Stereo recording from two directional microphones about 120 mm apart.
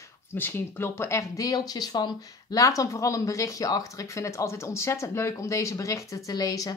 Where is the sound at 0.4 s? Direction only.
20° left (ahead or behind).